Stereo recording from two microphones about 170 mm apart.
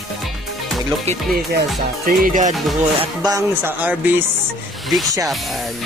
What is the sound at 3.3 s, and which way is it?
Speech, 15° right (ahead or behind).